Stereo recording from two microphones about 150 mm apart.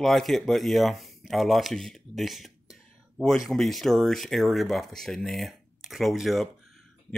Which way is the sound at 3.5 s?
Centre (ahead or behind).